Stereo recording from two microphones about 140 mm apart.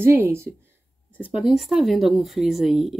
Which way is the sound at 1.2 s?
5° right (ahead or behind).